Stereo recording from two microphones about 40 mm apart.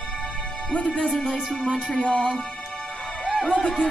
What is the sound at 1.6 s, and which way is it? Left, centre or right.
Music, right.